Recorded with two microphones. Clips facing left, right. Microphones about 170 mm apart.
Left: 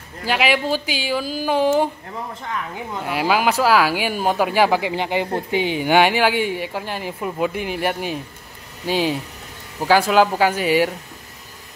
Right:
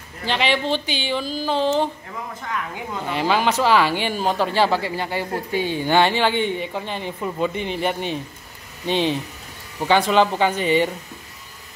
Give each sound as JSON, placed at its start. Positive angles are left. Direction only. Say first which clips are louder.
{"t": 0.3, "sound": "speech", "louder": "left 2 dB", "side_deg": 10}
{"t": 3.0, "sound": "speech", "louder": "left 1 dB", "side_deg": 5}